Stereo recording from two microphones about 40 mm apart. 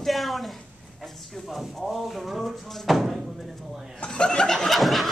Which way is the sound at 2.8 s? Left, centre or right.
Centre.